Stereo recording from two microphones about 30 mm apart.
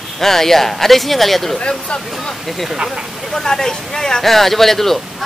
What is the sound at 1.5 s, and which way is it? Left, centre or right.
Speech, left.